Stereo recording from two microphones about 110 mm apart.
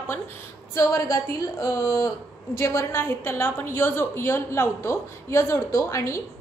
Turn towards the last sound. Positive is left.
turn(degrees=25)  # may be behind; listen again after turning